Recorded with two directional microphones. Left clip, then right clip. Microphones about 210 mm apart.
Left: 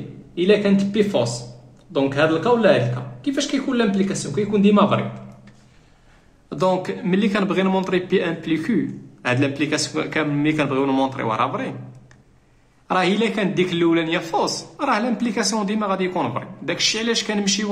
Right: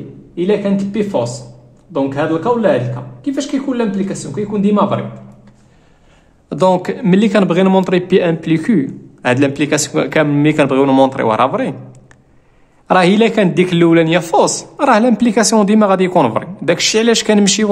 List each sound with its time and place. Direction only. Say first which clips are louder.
0.7 s speech: right 3 dB; 20° right (ahead or behind)
6.5 s a man's voice: right 7 dB; 45° right (ahead or behind)
12.8 s a man's voice: right 9 dB; 45° right (ahead or behind)